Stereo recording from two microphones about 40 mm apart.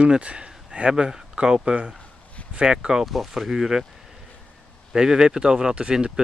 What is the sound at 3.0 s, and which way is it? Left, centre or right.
Speech, centre.